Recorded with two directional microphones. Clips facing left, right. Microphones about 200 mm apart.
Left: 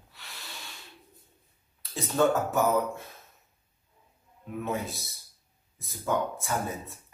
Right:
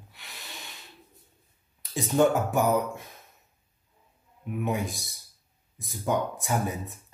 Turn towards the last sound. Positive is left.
turn(degrees=-15)  # may be behind; listen again after turning